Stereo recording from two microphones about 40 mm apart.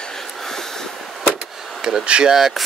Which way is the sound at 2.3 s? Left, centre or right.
Centre.